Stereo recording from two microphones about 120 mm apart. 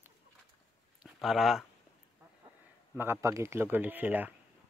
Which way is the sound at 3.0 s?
20° right (ahead or behind).